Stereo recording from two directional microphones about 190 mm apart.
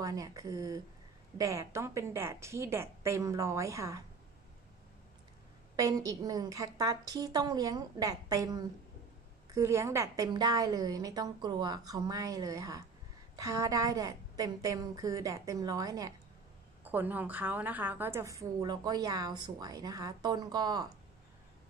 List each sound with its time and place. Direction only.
0.0 s a woman's voice: 20° right (ahead or behind)
5.8 s a woman's voice: 20° right (ahead or behind)